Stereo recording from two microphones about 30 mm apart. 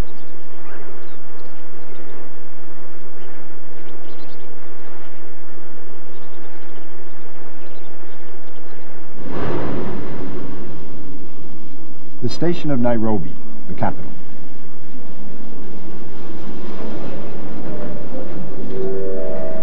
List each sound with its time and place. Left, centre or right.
9.2 s a sound: right
12.2 s a man's voice: right
15.2 s vehicle: right